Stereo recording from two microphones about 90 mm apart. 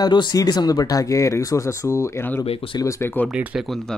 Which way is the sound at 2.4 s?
85° left.